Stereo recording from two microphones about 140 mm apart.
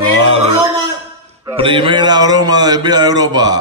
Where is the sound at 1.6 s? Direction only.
35° right (ahead or behind).